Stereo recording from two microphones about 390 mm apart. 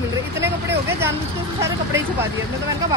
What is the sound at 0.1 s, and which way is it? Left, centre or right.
Vehicle, centre.